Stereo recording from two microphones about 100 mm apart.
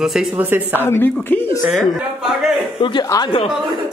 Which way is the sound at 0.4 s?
15° right (ahead or behind).